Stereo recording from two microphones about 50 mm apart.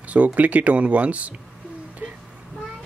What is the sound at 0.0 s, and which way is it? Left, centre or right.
Speech, right.